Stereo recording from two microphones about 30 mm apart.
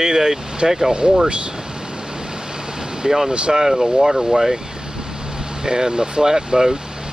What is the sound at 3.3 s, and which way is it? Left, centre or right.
Speech, right.